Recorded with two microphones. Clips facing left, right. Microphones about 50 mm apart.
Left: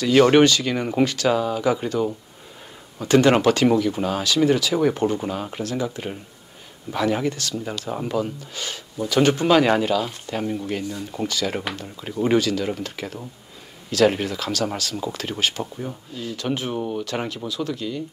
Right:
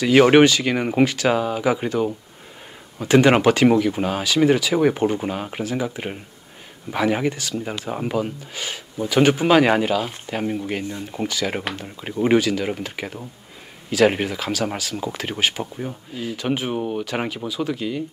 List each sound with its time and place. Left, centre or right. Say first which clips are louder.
0.0 s speech: right 2 dB; centre
10.8 s speech: even; right
11.1 s speech: right 1 dB; centre
12.0 s speech: right 2 dB; right
12.4 s speech: right 1 dB; centre